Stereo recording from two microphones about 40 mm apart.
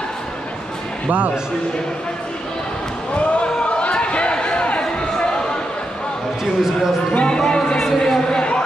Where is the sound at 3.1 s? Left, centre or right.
Left.